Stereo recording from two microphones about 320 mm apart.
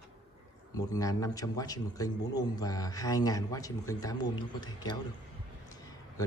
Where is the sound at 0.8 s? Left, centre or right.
Centre.